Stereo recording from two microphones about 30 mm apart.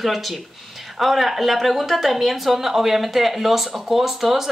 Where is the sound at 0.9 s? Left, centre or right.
Centre.